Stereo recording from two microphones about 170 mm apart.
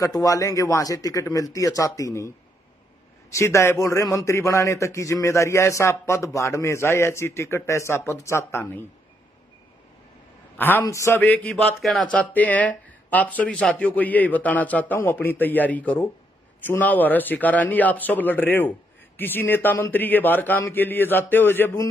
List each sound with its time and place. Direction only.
0.0 s a man's voice: 20° left (ahead or behind)
10.6 s a man's voice: 15° left (ahead or behind)